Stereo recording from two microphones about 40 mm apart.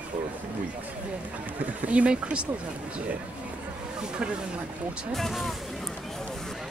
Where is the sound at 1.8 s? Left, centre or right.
Right.